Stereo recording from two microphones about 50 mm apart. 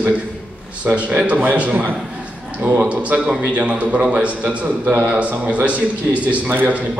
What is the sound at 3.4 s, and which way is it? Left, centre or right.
A man's voice, right.